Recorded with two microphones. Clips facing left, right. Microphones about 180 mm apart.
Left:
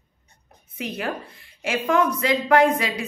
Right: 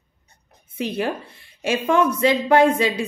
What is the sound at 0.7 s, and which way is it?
A woman's voice, 30° right (ahead or behind).